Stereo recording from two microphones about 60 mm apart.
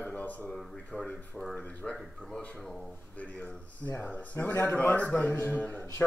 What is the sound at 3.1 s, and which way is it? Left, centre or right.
Speech, left.